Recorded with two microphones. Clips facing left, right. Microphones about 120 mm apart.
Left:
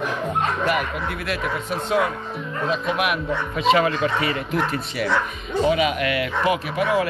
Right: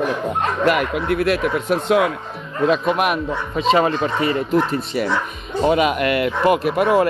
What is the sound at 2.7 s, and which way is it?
Speech, 50° right (ahead or behind).